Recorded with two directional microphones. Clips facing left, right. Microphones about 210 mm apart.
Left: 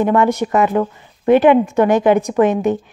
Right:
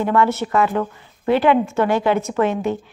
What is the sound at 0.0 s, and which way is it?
A woman's voice, 20° left (ahead or behind).